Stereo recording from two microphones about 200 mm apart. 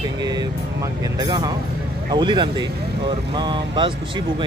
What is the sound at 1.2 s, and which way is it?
Speech, 20° right (ahead or behind).